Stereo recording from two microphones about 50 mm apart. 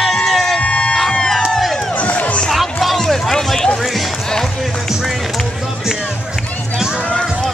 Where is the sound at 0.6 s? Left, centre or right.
Left.